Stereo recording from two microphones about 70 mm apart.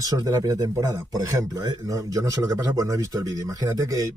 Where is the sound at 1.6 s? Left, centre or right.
Right.